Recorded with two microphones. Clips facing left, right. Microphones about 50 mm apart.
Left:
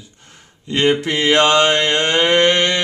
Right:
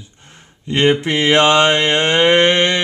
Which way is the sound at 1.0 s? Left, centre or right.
Centre.